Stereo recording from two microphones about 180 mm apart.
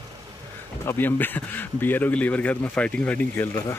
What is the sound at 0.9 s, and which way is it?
Speech, 10° left (ahead or behind).